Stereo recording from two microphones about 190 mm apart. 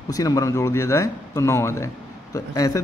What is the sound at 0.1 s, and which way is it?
A man's voice, 20° left (ahead or behind).